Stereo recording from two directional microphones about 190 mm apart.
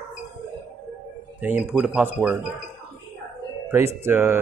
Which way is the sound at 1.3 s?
10° right (ahead or behind).